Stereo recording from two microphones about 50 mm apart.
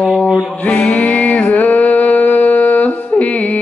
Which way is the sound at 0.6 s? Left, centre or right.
Left.